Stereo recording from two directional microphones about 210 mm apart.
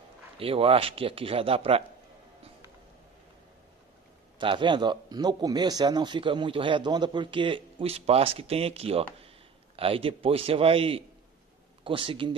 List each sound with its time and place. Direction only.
0.4 s a man's voice: 25° right (ahead or behind)
4.4 s a man's voice: 25° right (ahead or behind)